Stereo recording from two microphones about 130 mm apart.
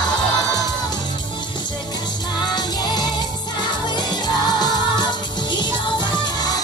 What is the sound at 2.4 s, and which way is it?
Music, 30° left (ahead or behind).